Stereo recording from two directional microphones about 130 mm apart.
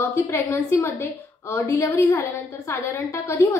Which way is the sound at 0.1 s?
20° left (ahead or behind).